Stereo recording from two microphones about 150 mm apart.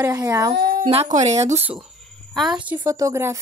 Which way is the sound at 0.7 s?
50° right (ahead or behind).